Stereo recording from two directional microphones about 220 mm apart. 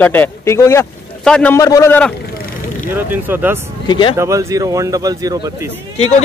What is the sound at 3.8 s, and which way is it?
Speech, 20° left (ahead or behind).